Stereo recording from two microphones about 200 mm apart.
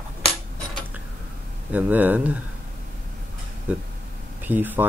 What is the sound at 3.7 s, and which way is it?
Speech, 5° right (ahead or behind).